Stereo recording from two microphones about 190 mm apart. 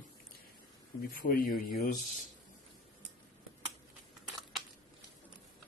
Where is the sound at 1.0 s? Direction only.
50° left (ahead or behind).